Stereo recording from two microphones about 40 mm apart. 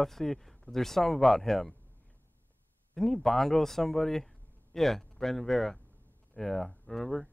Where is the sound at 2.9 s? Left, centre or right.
Centre.